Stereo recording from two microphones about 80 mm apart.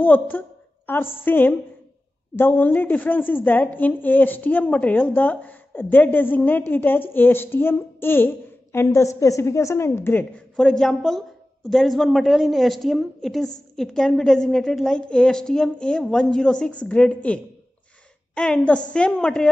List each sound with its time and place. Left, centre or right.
0.0 s a woman's voice: left
8.8 s a woman's voice: left
10.3 s a woman's voice: centre